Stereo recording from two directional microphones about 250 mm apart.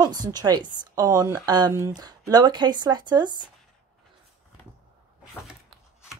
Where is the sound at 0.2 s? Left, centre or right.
Centre.